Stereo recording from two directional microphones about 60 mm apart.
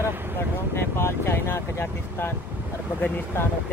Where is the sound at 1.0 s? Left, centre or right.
Left.